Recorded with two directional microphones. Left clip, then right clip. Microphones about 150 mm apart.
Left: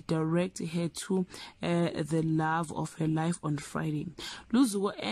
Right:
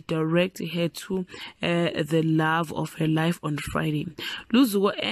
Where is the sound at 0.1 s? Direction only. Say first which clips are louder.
Right 6 dB; 15° right (ahead or behind).